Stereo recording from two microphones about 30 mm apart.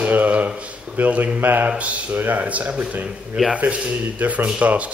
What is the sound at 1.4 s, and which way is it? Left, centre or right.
Speech, right.